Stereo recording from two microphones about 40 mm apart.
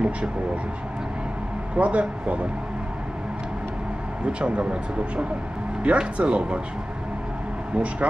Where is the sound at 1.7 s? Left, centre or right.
Right.